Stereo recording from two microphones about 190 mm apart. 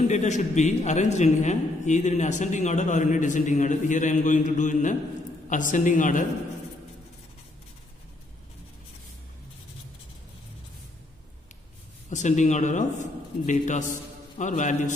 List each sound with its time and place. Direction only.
0.1 s a man's voice: 40° left (ahead or behind)
12.1 s a man's voice: 40° left (ahead or behind)